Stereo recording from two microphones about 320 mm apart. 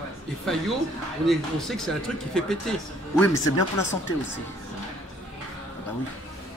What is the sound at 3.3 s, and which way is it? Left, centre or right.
Speech, left.